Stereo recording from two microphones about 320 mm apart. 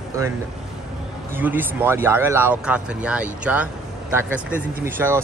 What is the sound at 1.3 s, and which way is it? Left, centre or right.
Speech, centre.